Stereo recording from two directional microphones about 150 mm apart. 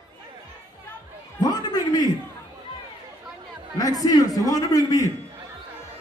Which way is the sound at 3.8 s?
25° left (ahead or behind).